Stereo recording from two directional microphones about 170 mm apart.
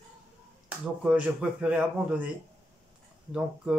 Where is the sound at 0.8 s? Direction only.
5° right (ahead or behind).